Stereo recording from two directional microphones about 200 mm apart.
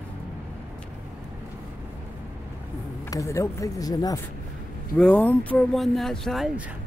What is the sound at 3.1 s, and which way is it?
Speech, 15° left (ahead or behind).